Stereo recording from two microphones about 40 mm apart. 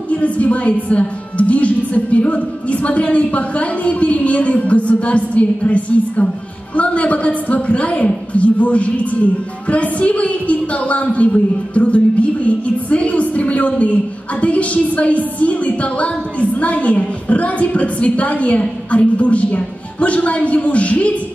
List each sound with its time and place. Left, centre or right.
0.1 s a woman's voice: left